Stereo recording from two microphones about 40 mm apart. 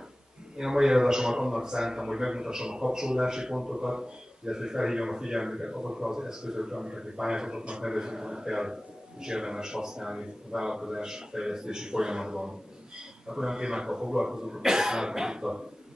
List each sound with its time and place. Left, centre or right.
0.6 s a man's voice: centre